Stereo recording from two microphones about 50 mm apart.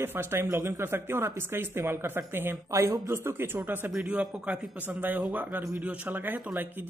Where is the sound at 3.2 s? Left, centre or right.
Right.